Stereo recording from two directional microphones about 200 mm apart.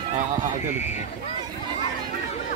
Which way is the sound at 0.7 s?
35° left (ahead or behind).